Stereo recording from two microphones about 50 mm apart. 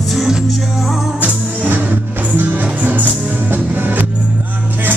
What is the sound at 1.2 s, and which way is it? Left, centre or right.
Music, right.